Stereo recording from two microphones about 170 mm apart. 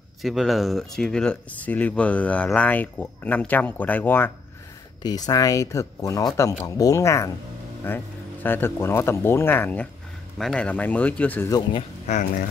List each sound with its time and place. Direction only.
0.2 s speech: centre (ahead or behind)
5.0 s speech: 20° left (ahead or behind)
12.1 s speech: 50° left (ahead or behind)